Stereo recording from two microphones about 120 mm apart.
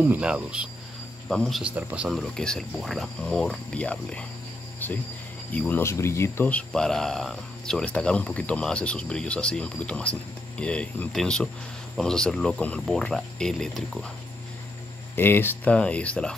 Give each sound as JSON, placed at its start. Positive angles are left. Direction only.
{"t": 0.0, "sound": "cricket", "side_deg": -10}
{"t": 1.3, "sound": "speech", "side_deg": 5}
{"t": 1.6, "sound": "cricket", "side_deg": -10}
{"t": 2.1, "sound": "speech", "side_deg": 5}
{"t": 4.7, "sound": "cricket", "side_deg": 15}
{"t": 5.5, "sound": "speech", "side_deg": 10}
{"t": 6.7, "sound": "speech", "side_deg": 5}
{"t": 15.1, "sound": "speech", "side_deg": 20}